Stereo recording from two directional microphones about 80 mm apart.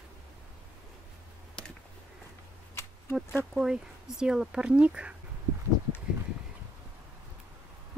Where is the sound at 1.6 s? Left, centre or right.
Centre.